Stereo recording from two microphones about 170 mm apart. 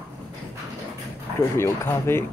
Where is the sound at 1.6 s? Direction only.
15° left (ahead or behind).